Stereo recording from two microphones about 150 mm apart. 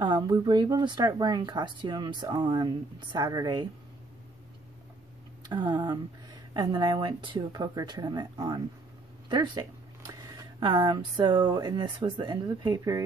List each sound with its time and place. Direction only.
0.0 s speech: 30° right (ahead or behind)
5.5 s speech: 30° right (ahead or behind)